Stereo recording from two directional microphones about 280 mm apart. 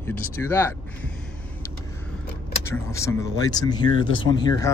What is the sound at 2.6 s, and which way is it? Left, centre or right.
Speech, centre.